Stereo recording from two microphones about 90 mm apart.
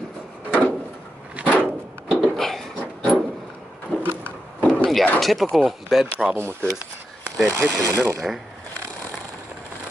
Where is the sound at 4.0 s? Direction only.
25° right (ahead or behind).